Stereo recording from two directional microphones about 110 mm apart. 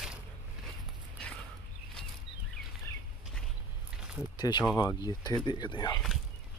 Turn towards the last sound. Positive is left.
turn(degrees=40)  # may be behind; listen again after turning